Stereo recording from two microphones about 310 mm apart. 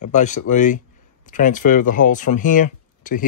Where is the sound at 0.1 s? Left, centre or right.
Left.